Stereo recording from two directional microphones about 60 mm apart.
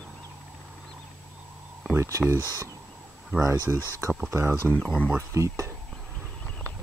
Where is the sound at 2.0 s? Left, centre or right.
Right.